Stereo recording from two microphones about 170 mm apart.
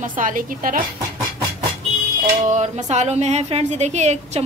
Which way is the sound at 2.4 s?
45° right (ahead or behind).